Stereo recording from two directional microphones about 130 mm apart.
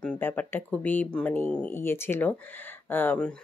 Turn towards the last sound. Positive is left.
turn(degrees=15)  # may be behind; listen again after turning